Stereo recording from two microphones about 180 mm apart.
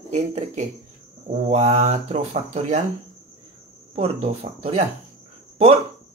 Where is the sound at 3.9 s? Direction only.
35° right (ahead or behind).